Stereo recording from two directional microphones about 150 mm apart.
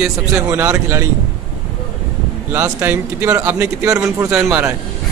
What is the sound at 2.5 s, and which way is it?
A man's voice, 15° right (ahead or behind).